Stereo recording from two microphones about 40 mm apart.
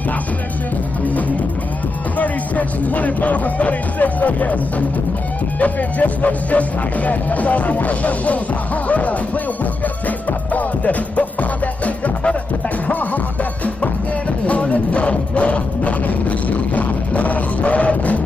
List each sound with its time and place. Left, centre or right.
2.1 s speech: left
10.0 s music: left
14.4 s music: left